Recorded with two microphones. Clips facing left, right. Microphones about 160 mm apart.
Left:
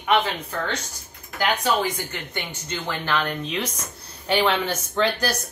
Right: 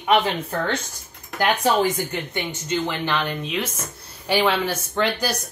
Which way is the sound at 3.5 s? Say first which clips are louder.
Right 1 dB; 5° right (ahead or behind).